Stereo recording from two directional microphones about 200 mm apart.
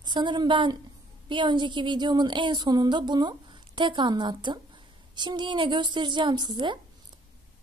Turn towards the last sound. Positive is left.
turn(degrees=-20)  # may be behind; listen again after turning